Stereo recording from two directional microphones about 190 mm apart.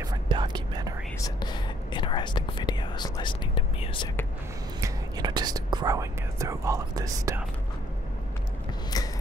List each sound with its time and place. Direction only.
0.0 s whispering: 20° right (ahead or behind)
1.2 s whispering: 25° left (ahead or behind)
4.7 s speech: 20° right (ahead or behind)
8.9 s a sound: 20° left (ahead or behind)